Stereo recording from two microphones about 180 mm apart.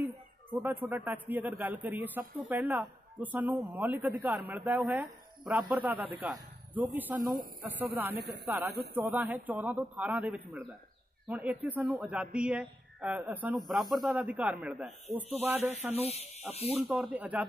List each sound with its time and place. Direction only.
0.0 s a sound: 10° right (ahead or behind)
1.6 s speech: 10° right (ahead or behind)
8.1 s speech: 65° right (ahead or behind)
8.5 s speech: 10° right (ahead or behind)
15.9 s speech: 35° left (ahead or behind)
16.7 s speech: centre (ahead or behind)